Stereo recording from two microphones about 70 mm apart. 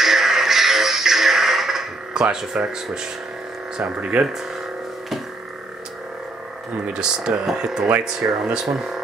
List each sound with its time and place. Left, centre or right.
0.0 s music: centre
2.5 s speech: centre
6.9 s speech: centre